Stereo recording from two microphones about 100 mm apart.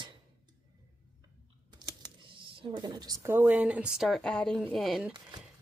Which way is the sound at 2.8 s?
40° right (ahead or behind).